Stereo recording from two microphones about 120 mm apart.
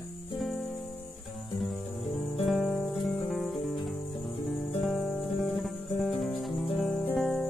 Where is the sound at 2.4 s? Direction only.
Centre (ahead or behind).